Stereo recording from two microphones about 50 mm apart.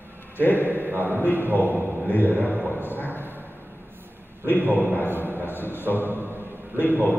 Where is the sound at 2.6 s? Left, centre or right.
Left.